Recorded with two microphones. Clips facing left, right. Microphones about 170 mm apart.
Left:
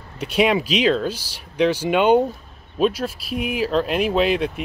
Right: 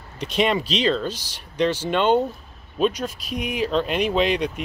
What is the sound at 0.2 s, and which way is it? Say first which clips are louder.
Speech: left 3 dB; 10° left (ahead or behind).